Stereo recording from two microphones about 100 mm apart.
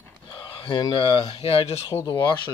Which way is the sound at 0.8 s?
55° left (ahead or behind).